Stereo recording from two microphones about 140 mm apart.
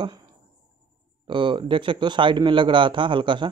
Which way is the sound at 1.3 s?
35° right (ahead or behind).